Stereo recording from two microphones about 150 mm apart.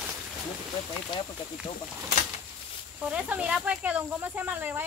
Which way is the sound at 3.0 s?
10° right (ahead or behind).